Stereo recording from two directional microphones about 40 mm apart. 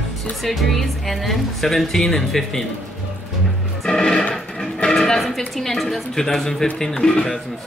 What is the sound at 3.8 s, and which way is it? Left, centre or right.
Music, centre.